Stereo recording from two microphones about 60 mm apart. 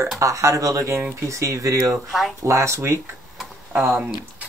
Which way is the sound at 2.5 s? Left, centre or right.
Right.